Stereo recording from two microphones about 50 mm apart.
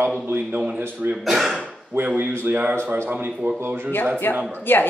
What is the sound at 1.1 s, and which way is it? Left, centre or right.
Speech, centre.